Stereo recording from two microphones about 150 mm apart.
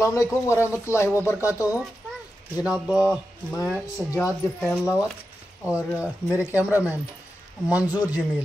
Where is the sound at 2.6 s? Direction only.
5° right (ahead or behind).